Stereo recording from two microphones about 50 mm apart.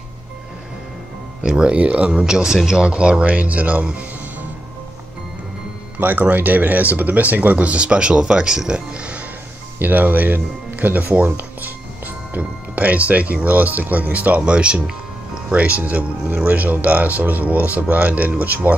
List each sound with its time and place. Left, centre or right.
1.4 s speech: centre
3.8 s music: right
5.9 s speech: right
9.8 s speech: right